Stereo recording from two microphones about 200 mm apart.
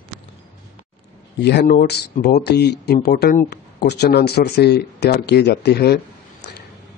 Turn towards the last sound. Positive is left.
turn(degrees=55)  # may be behind; listen again after turning